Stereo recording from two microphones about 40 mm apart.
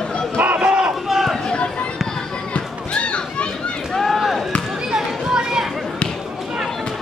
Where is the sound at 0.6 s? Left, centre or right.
Right.